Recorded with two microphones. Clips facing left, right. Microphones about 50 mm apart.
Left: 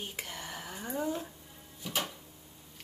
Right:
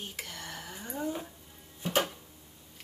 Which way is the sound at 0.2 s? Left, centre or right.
Centre.